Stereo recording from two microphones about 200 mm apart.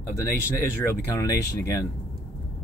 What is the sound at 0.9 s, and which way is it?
Speech, 15° left (ahead or behind).